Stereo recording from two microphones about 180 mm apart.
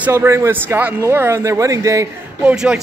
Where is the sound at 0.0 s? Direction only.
15° right (ahead or behind).